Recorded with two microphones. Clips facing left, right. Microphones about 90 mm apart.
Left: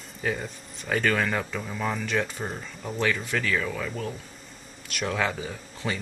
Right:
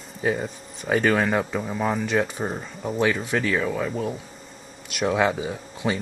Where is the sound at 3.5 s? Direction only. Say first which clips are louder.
Right 5 dB; 20° right (ahead or behind).